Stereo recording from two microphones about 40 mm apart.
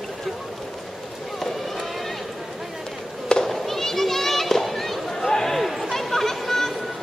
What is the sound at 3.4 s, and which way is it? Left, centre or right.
Children playing, centre.